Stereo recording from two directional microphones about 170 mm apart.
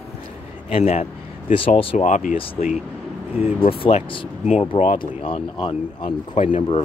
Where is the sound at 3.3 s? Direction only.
35° left (ahead or behind).